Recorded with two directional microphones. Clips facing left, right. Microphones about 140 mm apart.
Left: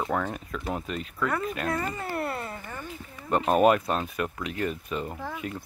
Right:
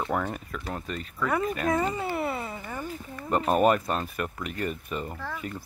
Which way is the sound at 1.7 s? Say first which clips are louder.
Right 4 dB; 15° right (ahead or behind).